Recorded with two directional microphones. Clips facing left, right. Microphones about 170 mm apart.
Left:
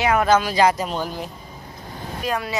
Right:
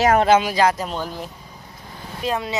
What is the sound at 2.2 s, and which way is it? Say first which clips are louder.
Speech: right 1 dB; 25° right (ahead or behind).